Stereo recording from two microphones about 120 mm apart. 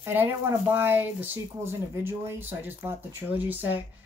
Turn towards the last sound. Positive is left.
turn(degrees=-15)  # may be behind; listen again after turning